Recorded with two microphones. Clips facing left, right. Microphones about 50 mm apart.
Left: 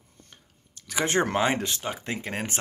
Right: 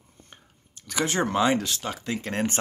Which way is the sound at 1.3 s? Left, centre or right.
Left.